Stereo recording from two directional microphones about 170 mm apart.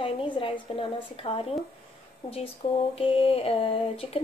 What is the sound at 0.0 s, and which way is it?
Speech, 30° left (ahead or behind).